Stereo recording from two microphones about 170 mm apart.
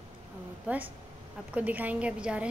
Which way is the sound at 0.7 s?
10° right (ahead or behind).